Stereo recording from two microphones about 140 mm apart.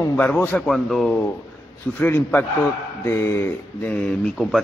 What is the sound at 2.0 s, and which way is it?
Speech, 10° left (ahead or behind).